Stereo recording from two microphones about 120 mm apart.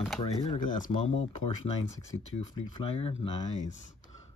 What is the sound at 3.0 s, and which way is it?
Speech, 50° left (ahead or behind).